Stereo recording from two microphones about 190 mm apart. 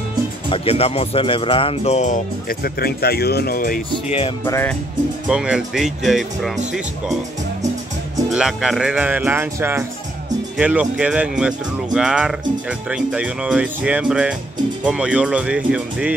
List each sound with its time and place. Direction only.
0.5 s speech: 30° left (ahead or behind); by 3.8 s 50° left (ahead or behind)
4.5 s speech: 10° left (ahead or behind)
5.3 s speech: 5° right (ahead or behind)
8.3 s speech: centre (ahead or behind)